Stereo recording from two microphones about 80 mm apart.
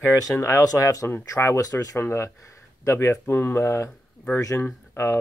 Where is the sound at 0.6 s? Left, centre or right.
Left.